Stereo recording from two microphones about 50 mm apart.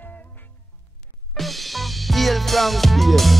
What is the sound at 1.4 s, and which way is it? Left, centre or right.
Music, centre.